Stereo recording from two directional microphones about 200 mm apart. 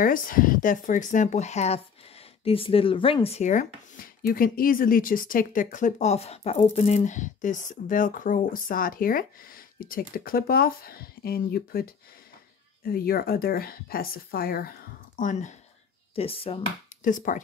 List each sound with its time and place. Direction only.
0.0 s speech: 45° left (ahead or behind); by 16.5 s 30° left (ahead or behind)
17.0 s speech: 40° left (ahead or behind)